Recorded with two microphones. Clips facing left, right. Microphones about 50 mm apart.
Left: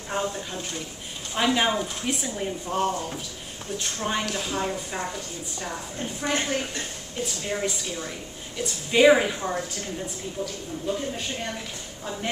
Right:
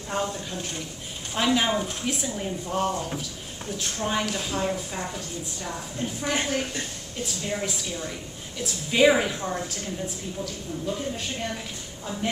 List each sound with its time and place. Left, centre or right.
0.1 s speech: centre
6.3 s speech: centre